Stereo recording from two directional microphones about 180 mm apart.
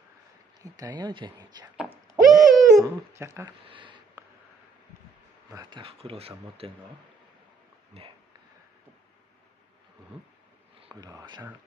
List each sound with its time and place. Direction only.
0.6 s speech: 20° right (ahead or behind)
2.0 s a sound: centre (ahead or behind)
3.1 s speech: 15° right (ahead or behind)
3.6 s a sound: 30° right (ahead or behind)
5.5 s speech: 25° right (ahead or behind)
7.9 s speech: 35° right (ahead or behind)
10.8 s speech: 20° right (ahead or behind)